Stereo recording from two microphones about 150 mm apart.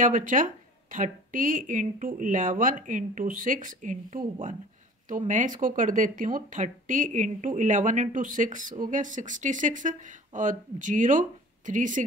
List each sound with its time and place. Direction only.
0.0 s speech: 60° right (ahead or behind)